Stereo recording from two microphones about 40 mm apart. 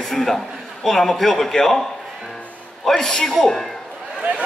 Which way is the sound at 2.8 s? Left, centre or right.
Centre.